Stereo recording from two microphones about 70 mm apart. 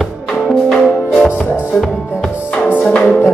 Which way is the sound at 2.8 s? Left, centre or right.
Centre.